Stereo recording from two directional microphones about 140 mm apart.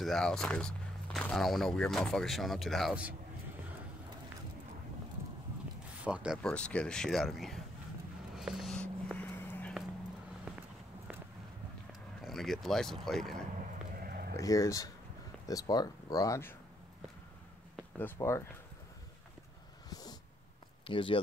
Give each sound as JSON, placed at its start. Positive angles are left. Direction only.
{"t": 0.0, "sound": "speech", "side_deg": 5}
{"t": 6.0, "sound": "speech", "side_deg": -5}
{"t": 6.4, "sound": "speech", "side_deg": 10}
{"t": 8.4, "sound": "a sound", "side_deg": 0}
{"t": 11.9, "sound": "speech", "side_deg": 0}
{"t": 13.9, "sound": "a sound", "side_deg": -90}
{"t": 14.3, "sound": "speech", "side_deg": 25}
{"t": 17.9, "sound": "speech", "side_deg": 15}
{"t": 19.9, "sound": "a sound", "side_deg": 30}
{"t": 20.8, "sound": "speech", "side_deg": 35}